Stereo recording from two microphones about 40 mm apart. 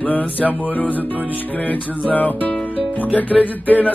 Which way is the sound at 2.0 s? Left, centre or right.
Left.